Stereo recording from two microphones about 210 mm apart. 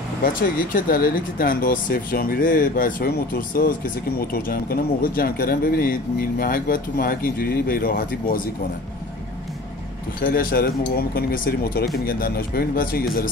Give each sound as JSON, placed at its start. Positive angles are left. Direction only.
{"t": 0.2, "sound": "speech", "side_deg": 40}
{"t": 10.2, "sound": "speech", "side_deg": 45}